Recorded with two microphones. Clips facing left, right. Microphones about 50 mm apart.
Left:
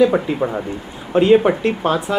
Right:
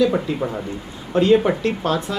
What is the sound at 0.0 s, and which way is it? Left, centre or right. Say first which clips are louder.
Speech: left 4 dB; left.